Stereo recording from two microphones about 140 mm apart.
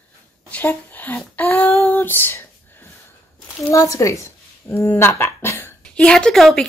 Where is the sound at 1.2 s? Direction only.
10° left (ahead or behind).